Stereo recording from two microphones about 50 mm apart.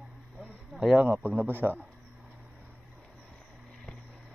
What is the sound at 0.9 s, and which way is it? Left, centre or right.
Speech, right.